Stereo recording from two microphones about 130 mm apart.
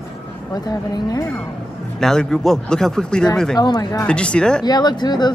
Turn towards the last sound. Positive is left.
turn(degrees=35)  # may be behind; listen again after turning